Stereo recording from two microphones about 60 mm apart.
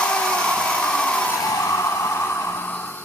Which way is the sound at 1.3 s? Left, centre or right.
Left.